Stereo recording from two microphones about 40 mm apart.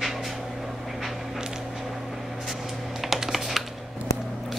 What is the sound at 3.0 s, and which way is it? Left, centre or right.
Computer keyboard, centre.